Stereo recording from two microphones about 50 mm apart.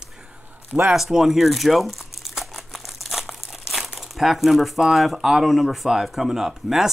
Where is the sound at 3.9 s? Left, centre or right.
Centre.